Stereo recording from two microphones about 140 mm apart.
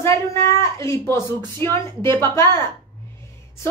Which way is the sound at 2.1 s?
20° left (ahead or behind).